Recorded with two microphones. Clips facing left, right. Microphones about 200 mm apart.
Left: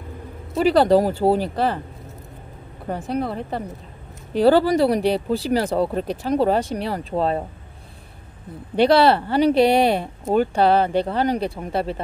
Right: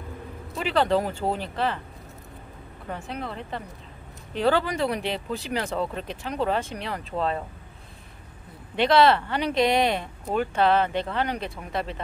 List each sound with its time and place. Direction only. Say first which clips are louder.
0.6 s speech: left 8 dB; 40° left (ahead or behind)
2.9 s speech: left 9 dB; 40° left (ahead or behind)
8.7 s speech: left 4 dB; 35° left (ahead or behind)